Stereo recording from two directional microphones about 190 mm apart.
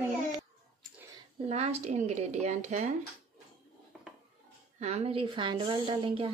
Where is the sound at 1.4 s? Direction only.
35° right (ahead or behind).